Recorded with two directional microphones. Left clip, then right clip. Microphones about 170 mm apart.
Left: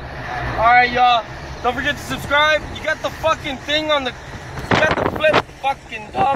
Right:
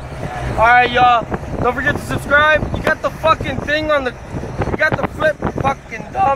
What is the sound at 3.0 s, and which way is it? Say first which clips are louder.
Speech: right 3 dB; 5° right (ahead or behind).